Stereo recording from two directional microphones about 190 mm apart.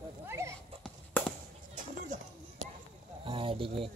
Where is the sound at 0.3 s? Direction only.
15° right (ahead or behind).